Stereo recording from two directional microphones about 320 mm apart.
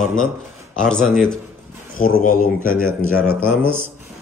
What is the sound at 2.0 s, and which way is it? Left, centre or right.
Speech, left.